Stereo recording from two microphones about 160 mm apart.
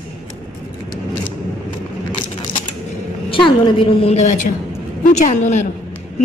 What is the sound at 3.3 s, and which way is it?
A woman's voice, 35° left (ahead or behind).